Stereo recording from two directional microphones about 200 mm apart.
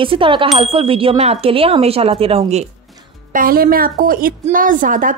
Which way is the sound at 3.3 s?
45° right (ahead or behind).